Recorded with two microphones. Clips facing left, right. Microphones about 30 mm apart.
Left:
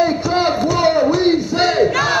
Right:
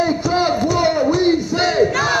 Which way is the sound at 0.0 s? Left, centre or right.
Centre.